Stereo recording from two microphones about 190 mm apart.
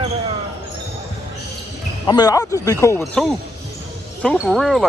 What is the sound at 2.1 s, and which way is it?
Speech, 20° left (ahead or behind).